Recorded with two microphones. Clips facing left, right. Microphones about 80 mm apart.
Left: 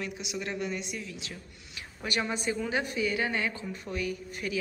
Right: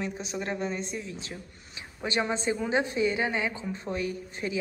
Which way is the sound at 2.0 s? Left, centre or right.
Right.